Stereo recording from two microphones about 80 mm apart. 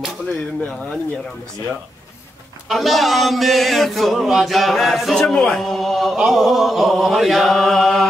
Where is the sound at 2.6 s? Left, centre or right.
Centre.